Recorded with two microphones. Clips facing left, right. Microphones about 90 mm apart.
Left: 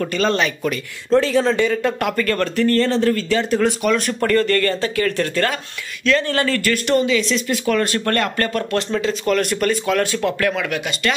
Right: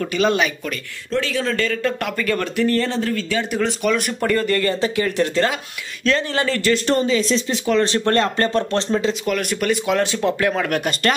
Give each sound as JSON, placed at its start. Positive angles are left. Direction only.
{"t": 0.0, "sound": "speech", "side_deg": -10}
{"t": 1.1, "sound": "a man's voice", "side_deg": 35}
{"t": 1.6, "sound": "speech", "side_deg": 15}
{"t": 3.1, "sound": "a man's voice", "side_deg": 0}
{"t": 6.9, "sound": "speech", "side_deg": -35}
{"t": 7.4, "sound": "speech", "side_deg": -20}
{"t": 9.2, "sound": "a man's voice", "side_deg": -5}
{"t": 9.7, "sound": "speech", "side_deg": -20}
{"t": 10.7, "sound": "speech", "side_deg": -45}